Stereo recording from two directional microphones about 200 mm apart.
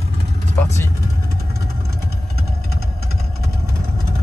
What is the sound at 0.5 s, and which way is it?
Speech, 15° left (ahead or behind).